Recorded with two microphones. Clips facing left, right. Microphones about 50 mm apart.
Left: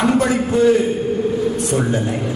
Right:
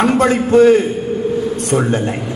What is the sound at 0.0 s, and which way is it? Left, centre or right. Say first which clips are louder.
A man's voice: right 3 dB; right.